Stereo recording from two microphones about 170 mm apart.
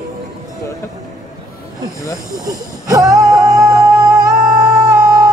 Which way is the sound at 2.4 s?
20° right (ahead or behind).